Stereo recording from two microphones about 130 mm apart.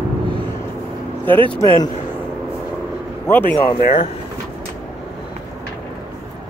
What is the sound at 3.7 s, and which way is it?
Speech, 50° left (ahead or behind).